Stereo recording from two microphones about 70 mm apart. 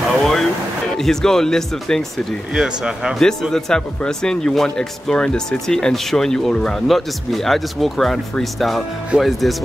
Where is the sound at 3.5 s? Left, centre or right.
Centre.